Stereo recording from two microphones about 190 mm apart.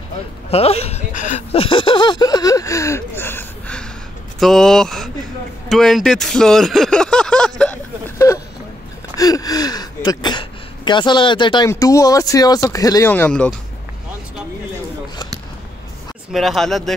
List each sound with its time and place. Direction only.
0.5 s speech: 30° left (ahead or behind)
1.5 s a sound: 25° left (ahead or behind); by 3.8 s 10° left (ahead or behind)
4.4 s speech: centre (ahead or behind)
5.7 s a sound: centre (ahead or behind)
8.2 s vehicle: 15° left (ahead or behind)
9.1 s gasp: 20° left (ahead or behind)
10.9 s speech: 25° left (ahead or behind); by 13.6 s 5° left (ahead or behind)
16.3 s speech: centre (ahead or behind)